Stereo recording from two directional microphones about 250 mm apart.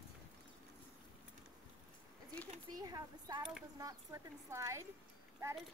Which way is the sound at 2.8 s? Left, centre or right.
Centre.